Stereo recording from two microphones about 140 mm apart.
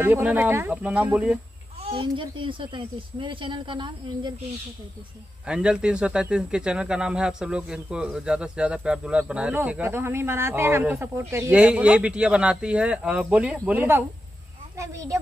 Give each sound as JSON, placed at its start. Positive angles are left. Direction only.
{"t": 0.0, "sound": "a man's voice", "side_deg": -10}
{"t": 1.8, "sound": "speech", "side_deg": -40}
{"t": 5.5, "sound": "a man's voice", "side_deg": -5}
{"t": 11.5, "sound": "a man's voice", "side_deg": -10}
{"t": 14.8, "sound": "a woman's voice", "side_deg": -25}